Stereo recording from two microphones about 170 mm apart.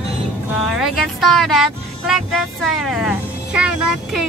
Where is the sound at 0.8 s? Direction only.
Centre (ahead or behind).